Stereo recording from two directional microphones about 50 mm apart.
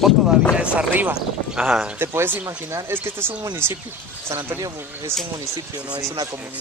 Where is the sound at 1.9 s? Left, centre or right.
Right.